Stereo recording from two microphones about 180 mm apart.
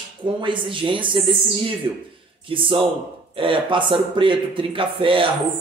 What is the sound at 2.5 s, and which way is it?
Speech, 30° right (ahead or behind).